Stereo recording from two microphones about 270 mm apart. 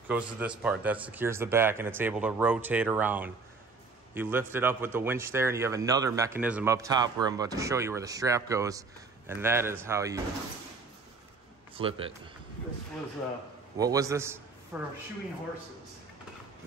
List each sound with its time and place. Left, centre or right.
0.1 s speech: centre
11.7 s speech: centre
13.7 s a man's voice: centre